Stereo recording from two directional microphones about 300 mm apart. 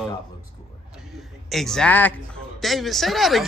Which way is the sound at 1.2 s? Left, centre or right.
Centre.